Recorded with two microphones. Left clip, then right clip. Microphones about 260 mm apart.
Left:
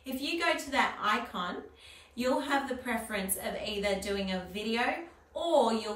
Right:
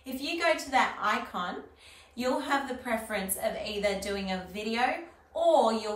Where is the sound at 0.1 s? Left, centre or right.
Centre.